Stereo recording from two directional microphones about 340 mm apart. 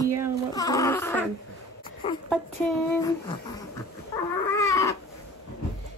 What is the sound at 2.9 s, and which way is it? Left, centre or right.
Speech, centre.